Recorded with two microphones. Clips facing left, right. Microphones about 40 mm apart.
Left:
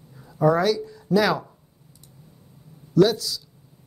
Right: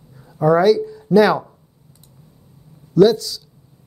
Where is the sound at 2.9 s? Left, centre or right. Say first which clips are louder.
Right 5 dB; centre.